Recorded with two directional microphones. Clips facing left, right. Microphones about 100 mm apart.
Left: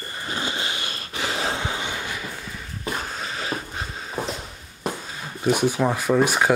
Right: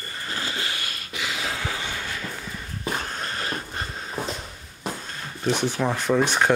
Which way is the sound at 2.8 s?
Centre (ahead or behind).